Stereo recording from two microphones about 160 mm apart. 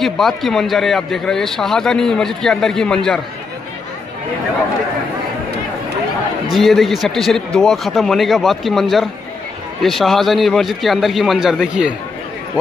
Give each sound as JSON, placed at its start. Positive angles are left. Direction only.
{"t": 0.0, "sound": "a man's voice", "side_deg": 0}
{"t": 6.5, "sound": "a man's voice", "side_deg": 0}